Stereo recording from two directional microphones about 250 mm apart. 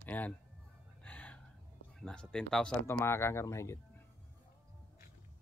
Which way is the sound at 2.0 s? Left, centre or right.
Centre.